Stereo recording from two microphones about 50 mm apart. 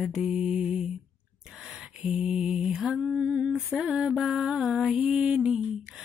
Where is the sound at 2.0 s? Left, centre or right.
Centre.